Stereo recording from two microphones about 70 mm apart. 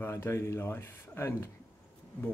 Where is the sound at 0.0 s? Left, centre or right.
Left.